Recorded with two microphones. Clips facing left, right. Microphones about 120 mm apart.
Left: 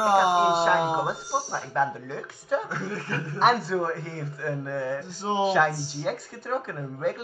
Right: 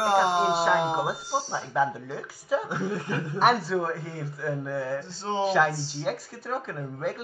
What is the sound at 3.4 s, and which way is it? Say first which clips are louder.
Speech: left 1 dB; centre (ahead or behind).